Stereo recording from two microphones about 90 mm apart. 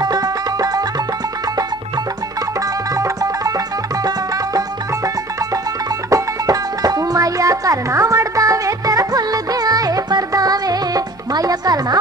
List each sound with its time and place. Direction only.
0.0 s music: 45° right (ahead or behind)
2.9 s music: 40° right (ahead or behind)